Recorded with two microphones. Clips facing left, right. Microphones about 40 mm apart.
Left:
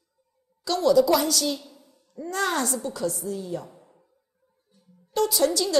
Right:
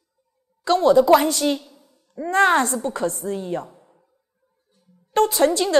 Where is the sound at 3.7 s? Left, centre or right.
Centre.